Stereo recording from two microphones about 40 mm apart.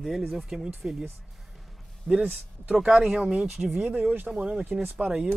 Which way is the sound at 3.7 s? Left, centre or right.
Right.